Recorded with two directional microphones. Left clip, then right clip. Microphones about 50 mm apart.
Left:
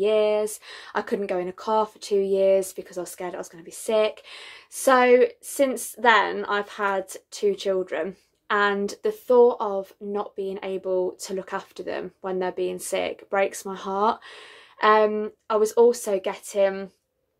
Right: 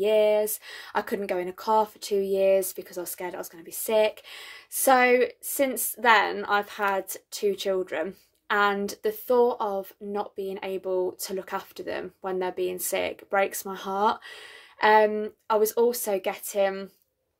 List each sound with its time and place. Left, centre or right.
0.0 s speech: left
8.1 s speech: left